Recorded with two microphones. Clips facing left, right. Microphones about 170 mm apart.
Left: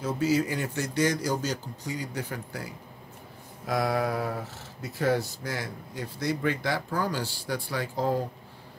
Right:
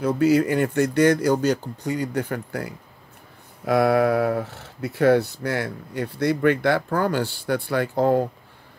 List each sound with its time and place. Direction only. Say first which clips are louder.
0.0 s speech: right 7 dB; 60° right (ahead or behind)